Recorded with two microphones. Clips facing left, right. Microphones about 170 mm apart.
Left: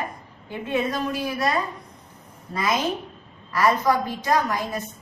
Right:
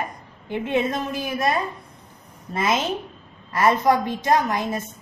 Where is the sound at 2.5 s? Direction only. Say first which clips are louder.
Right 1 dB; 25° right (ahead or behind).